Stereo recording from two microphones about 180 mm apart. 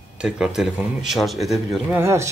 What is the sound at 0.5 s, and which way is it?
A man's voice, 5° right (ahead or behind).